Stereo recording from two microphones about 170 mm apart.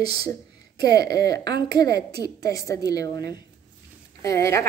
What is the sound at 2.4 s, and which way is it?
A woman's voice, 20° left (ahead or behind).